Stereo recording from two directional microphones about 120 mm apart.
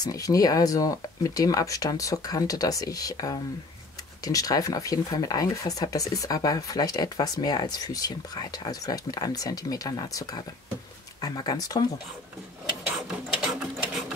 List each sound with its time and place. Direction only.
0.0 s speech: 30° left (ahead or behind)
12.9 s printer: centre (ahead or behind)